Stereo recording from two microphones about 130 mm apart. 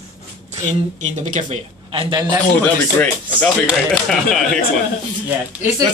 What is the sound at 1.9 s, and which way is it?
Speech, 35° right (ahead or behind).